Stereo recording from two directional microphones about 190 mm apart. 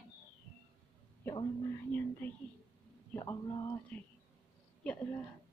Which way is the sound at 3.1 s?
20° left (ahead or behind).